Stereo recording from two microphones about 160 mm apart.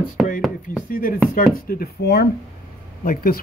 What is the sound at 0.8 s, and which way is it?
Speech, 60° left (ahead or behind).